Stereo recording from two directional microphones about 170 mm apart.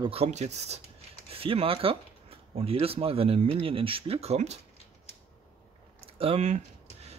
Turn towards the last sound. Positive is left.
turn(degrees=-40)  # may be behind; listen again after turning